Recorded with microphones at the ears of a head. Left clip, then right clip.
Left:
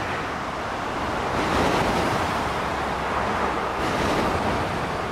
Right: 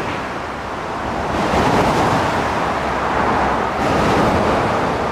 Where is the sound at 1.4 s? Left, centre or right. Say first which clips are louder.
Right 7 dB; right.